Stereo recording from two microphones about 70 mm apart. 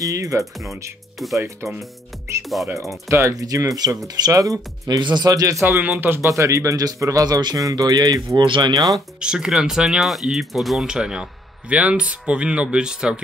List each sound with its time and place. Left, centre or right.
0.0 s speech: right
1.6 s speech: right
2.4 s music: centre
2.7 s speech: right
3.4 s a man's voice: right
5.8 s speech: right
6.2 s a man's voice: right
9.2 s speech: centre